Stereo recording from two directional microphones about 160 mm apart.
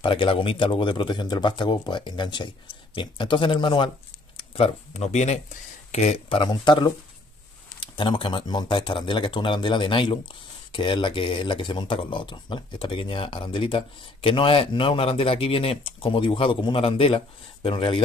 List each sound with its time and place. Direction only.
0.0 s speech: 30° left (ahead or behind)